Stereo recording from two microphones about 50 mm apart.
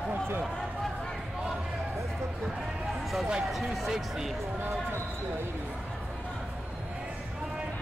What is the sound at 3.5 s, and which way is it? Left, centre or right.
Speech, centre.